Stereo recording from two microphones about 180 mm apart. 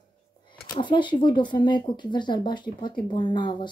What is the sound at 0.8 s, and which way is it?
A woman's voice, 25° left (ahead or behind).